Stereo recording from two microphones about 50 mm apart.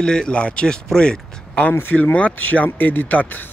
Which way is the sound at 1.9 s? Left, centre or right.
Left.